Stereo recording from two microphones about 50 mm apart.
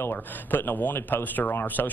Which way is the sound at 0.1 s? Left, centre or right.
Left.